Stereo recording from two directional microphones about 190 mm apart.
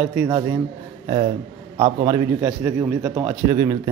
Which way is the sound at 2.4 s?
10° right (ahead or behind).